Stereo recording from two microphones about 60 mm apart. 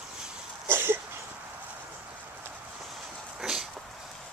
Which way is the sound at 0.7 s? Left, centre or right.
Right.